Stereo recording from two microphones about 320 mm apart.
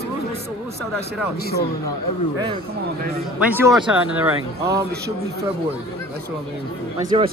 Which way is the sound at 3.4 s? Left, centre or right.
Centre.